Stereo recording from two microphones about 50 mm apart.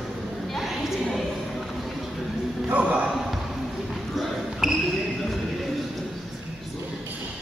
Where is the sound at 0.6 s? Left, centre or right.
Centre.